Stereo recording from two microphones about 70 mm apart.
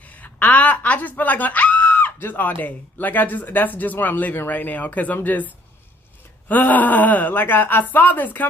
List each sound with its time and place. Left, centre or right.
0.0 s speech: left
6.5 s speech: left